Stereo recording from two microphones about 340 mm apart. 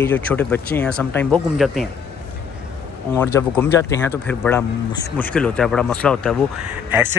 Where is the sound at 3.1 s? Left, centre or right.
Centre.